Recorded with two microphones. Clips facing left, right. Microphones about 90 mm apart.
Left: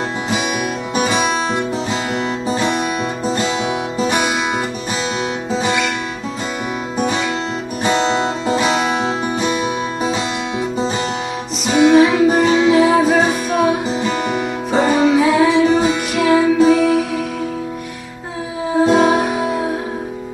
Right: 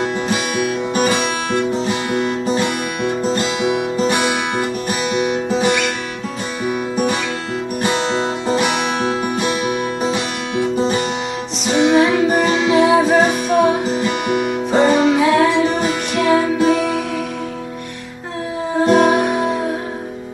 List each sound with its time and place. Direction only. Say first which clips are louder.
0.9 s music: even; 15° left (ahead or behind)
2.4 s music: left 1 dB; 20° left (ahead or behind)
11.7 s music: left 3 dB; 5° left (ahead or behind)
12.3 s music: left 2 dB; 15° right (ahead or behind)
12.7 s music: even; centre (ahead or behind)
18.7 s music: even; centre (ahead or behind)